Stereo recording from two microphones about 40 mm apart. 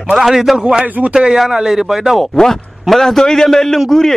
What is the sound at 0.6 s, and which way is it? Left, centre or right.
Speech, centre.